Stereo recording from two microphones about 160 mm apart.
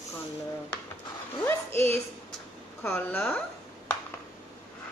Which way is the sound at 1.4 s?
15° left (ahead or behind).